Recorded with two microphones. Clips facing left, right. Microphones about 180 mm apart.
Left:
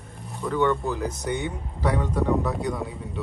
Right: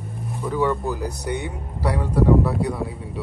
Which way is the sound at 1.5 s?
5° right (ahead or behind).